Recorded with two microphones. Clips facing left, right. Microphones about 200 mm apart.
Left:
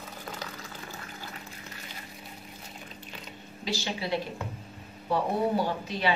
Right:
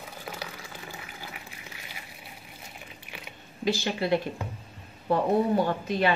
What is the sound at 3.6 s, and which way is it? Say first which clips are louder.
Speech: right 6 dB; 55° right (ahead or behind).